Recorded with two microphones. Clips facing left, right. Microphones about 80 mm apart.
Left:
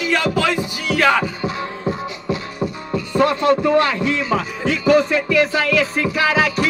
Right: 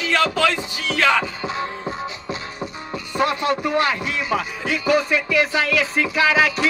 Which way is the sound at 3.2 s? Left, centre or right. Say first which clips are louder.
Left 5 dB; centre.